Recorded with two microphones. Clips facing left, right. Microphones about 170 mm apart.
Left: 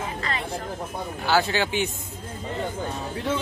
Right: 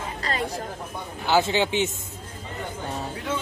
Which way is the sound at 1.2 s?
20° right (ahead or behind).